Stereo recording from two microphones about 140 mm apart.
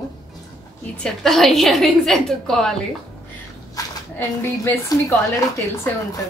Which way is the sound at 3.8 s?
25° left (ahead or behind).